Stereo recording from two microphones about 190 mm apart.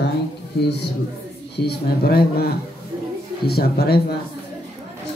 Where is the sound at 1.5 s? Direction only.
55° left (ahead or behind).